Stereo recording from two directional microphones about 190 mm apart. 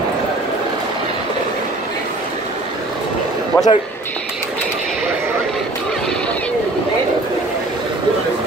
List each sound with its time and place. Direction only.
3.5 s speech: 15° left (ahead or behind)